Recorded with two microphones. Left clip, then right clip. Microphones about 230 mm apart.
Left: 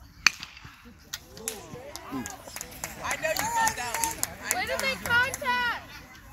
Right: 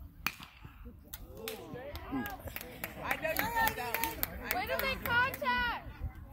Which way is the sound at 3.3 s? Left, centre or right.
Right.